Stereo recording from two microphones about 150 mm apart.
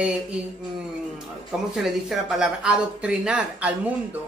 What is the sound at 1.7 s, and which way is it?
Speech, centre (ahead or behind).